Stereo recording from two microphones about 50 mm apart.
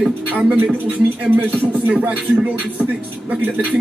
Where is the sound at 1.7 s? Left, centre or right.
Right.